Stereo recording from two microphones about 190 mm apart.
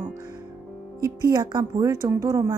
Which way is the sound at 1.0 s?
20° right (ahead or behind).